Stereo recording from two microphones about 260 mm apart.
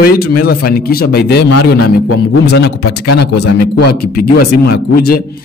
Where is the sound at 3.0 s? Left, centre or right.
Left.